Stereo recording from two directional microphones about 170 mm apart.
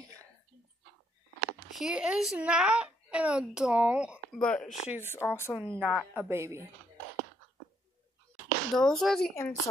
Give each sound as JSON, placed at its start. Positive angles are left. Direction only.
{"t": 1.7, "sound": "speech", "side_deg": -5}
{"t": 4.4, "sound": "speech", "side_deg": 5}
{"t": 5.5, "sound": "a woman's voice", "side_deg": -10}
{"t": 8.7, "sound": "speech", "side_deg": 0}
{"t": 9.3, "sound": "speech", "side_deg": 15}